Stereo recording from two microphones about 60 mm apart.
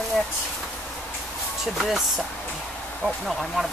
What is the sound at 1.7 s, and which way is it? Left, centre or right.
Speech, centre.